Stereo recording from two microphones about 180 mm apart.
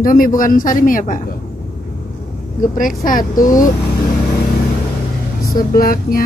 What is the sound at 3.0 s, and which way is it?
Speech, 50° left (ahead or behind).